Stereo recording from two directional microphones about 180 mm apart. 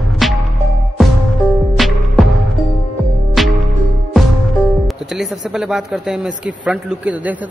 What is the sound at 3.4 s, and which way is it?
Music, centre (ahead or behind).